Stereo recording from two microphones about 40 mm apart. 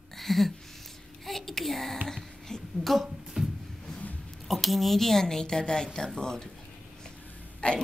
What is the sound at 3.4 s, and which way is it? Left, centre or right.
Music, right.